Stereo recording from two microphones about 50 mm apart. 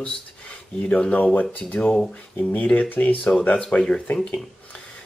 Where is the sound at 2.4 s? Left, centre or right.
Left.